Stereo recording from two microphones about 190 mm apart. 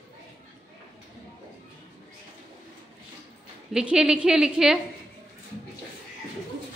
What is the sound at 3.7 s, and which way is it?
A woman's voice, 5° right (ahead or behind).